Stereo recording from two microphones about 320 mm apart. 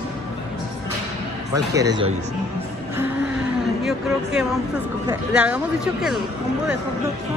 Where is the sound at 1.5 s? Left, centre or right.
Centre.